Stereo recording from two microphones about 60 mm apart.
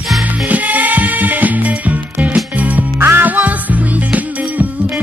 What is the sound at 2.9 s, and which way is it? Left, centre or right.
Music, right.